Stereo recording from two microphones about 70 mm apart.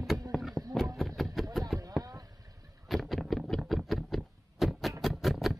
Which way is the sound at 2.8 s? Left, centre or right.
Centre.